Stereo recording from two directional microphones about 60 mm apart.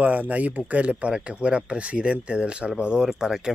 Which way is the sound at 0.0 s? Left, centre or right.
Right.